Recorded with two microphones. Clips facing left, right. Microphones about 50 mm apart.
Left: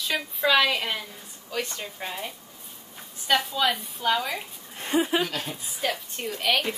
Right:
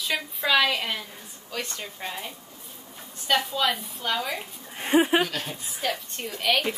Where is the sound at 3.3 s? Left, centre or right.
Centre.